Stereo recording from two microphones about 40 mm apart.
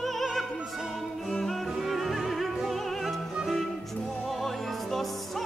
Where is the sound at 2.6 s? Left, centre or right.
Centre.